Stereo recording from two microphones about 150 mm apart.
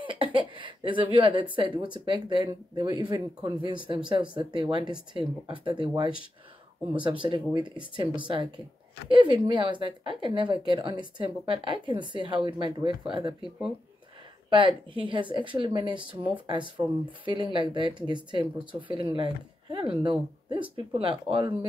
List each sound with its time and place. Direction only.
0.0 s speech: 35° right (ahead or behind)
14.5 s a woman's voice: 30° right (ahead or behind)